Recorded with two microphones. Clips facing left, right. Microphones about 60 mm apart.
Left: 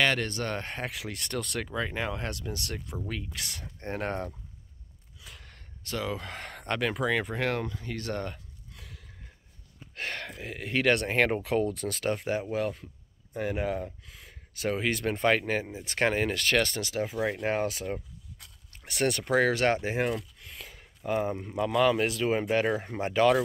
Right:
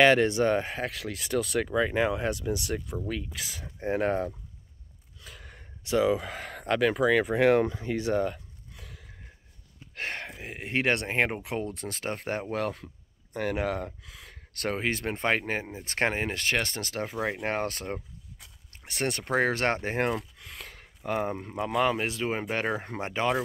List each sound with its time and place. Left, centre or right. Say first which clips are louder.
0.0 s speech: right 7 dB; centre
7.6 s a sound: right 6 dB; centre
9.9 s a sound: right 1 dB; right
10.4 s speech: left 1 dB; right
12.2 s speech: left 1 dB; right
14.8 s speech: left 3 dB; right
16.9 s speech: right 1 dB; right
18.9 s speech: left 2 dB; right
20.3 s a sound: right 2 dB; right
21.0 s speech: left 1 dB; right